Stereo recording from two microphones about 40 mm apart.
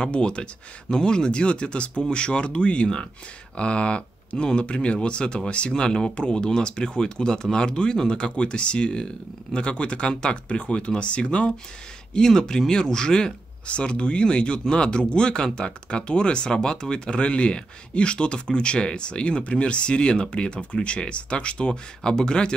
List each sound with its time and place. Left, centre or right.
0.0 s speech: left
12.1 s speech: centre
13.7 s speech: left